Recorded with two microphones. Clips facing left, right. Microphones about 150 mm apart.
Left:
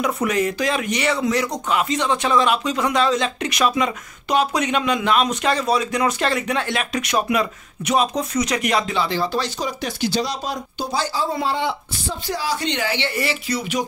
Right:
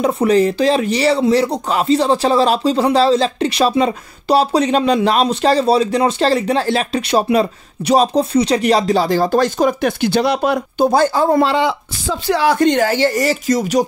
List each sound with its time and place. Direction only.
0.0 s speech: 30° right (ahead or behind); by 11.5 s 55° right (ahead or behind)
11.5 s speech: 90° right; by 13.8 s 40° right (ahead or behind)